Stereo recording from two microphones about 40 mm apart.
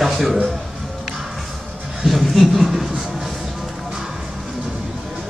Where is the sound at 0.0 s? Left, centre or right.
Centre.